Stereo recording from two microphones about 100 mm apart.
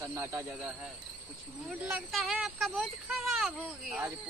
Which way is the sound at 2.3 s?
10° right (ahead or behind).